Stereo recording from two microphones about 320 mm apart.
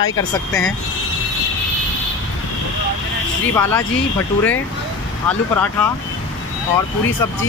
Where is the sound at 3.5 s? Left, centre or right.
Centre.